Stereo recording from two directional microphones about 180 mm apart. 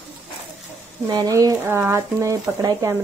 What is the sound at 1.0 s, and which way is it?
A woman's voice, 20° right (ahead or behind).